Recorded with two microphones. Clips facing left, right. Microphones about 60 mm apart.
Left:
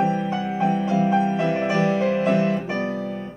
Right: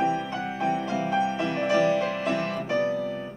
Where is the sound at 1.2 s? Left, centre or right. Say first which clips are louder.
Left 4 dB; left.